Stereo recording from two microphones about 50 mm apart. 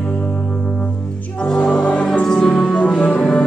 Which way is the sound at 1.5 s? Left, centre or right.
Left.